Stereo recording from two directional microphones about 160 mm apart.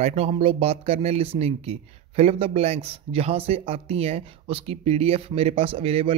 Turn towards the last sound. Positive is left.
turn(degrees=-35)  # may be behind; listen again after turning